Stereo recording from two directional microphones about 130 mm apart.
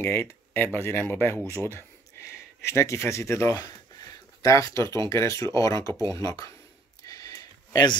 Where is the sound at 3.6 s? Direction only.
30° left (ahead or behind).